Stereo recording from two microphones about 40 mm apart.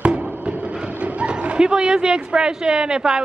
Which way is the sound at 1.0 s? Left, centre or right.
Right.